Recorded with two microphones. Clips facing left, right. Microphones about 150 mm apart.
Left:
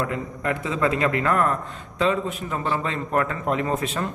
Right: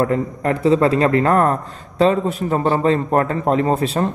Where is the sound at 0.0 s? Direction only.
40° right (ahead or behind).